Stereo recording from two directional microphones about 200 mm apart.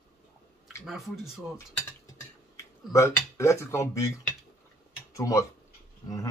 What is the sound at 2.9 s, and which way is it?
Speech, 15° left (ahead or behind).